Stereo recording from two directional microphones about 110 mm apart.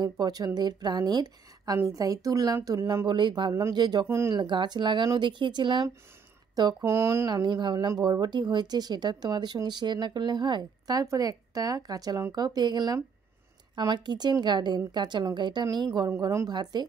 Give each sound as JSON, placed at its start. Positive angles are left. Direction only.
{"t": 0.0, "sound": "speech", "side_deg": -40}
{"t": 3.1, "sound": "speech", "side_deg": -45}
{"t": 6.8, "sound": "a woman's voice", "side_deg": -25}
{"t": 7.2, "sound": "speech", "side_deg": -40}
{"t": 16.1, "sound": "a woman's voice", "side_deg": -25}